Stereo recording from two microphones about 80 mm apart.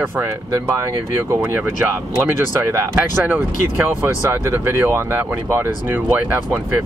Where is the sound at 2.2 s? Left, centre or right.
Right.